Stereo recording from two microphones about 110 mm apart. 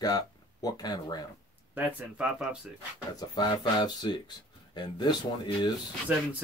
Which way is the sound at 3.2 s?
40° left (ahead or behind).